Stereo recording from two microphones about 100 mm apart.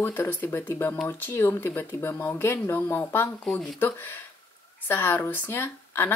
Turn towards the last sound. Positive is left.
turn(degrees=20)  # may be behind; listen again after turning